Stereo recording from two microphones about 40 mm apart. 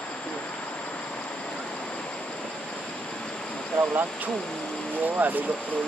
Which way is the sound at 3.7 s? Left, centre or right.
Right.